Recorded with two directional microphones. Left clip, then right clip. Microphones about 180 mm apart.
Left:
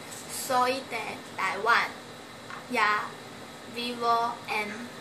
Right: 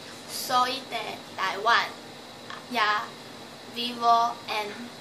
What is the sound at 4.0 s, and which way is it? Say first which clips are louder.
Speech: right 5 dB; 10° right (ahead or behind).